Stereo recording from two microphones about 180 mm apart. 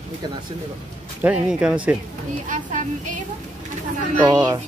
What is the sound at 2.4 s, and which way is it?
Speech, 45° right (ahead or behind).